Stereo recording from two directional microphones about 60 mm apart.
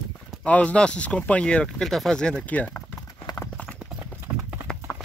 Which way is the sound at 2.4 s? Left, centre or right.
Left.